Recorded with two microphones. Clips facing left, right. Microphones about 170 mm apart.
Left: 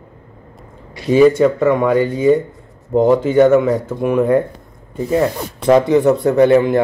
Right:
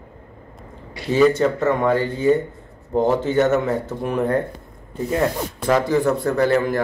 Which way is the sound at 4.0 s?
80° left.